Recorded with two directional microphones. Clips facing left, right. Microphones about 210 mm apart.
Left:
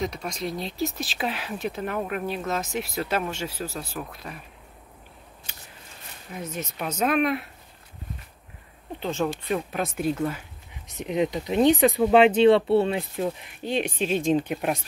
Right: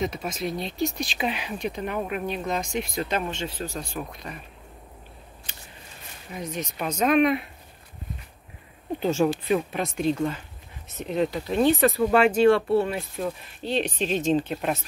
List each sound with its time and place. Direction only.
0.0 s speech: 5° right (ahead or behind)
5.5 s scissors: 10° left (ahead or behind)
6.3 s speech: 5° left (ahead or behind)
9.0 s speech: 10° right (ahead or behind); by 14.8 s 10° left (ahead or behind)